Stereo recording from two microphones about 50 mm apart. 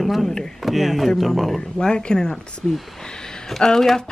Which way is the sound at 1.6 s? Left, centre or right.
Centre.